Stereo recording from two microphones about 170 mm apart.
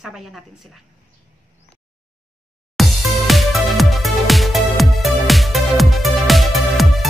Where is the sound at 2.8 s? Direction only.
Centre (ahead or behind).